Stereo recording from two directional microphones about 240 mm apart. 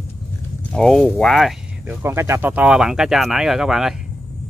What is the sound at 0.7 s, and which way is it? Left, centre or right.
Speech, centre.